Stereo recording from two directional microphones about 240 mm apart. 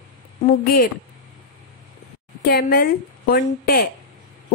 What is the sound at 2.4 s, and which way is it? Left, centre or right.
A woman's voice, left.